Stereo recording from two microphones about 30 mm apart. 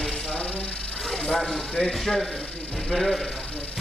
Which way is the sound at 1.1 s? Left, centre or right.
Centre.